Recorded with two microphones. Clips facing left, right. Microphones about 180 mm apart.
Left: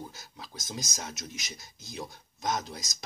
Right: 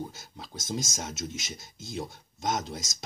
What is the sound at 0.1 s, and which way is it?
Speech, 25° right (ahead or behind).